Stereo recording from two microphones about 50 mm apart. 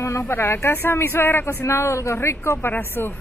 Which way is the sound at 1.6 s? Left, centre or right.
Left.